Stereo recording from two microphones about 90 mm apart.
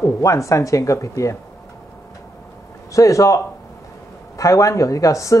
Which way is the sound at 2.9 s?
35° left (ahead or behind).